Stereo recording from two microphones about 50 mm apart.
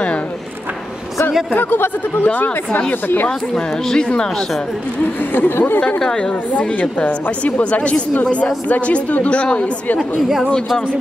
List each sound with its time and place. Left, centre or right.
1.5 s speech: left
3.3 s speech: centre
5.3 s speech: left
5.9 s speech: centre
6.5 s a woman's voice: left
9.9 s speech: centre